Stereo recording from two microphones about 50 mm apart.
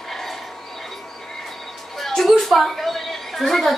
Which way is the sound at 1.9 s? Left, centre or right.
Centre.